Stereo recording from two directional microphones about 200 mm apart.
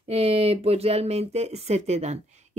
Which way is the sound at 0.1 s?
30° right (ahead or behind).